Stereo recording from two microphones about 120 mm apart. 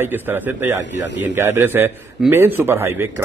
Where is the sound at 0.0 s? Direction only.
20° right (ahead or behind).